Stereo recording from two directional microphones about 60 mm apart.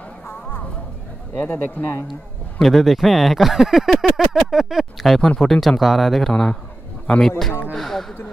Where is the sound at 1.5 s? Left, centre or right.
Left.